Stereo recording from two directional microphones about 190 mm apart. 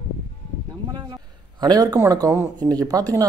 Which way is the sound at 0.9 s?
20° right (ahead or behind).